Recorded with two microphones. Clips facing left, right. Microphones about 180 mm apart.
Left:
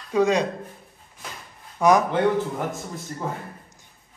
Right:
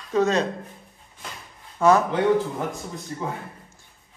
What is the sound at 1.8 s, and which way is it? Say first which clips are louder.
Speech: even; 15° left (ahead or behind).